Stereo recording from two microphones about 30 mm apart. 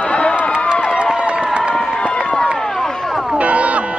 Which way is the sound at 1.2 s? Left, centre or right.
Right.